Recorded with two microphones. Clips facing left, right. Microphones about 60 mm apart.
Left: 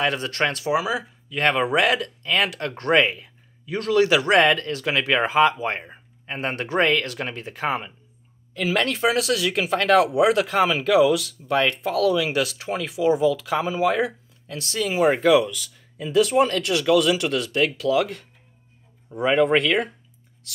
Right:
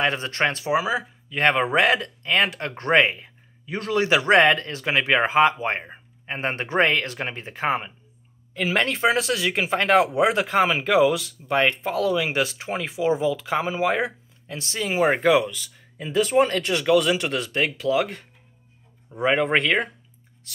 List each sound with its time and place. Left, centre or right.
0.0 s speech: right
19.2 s speech: right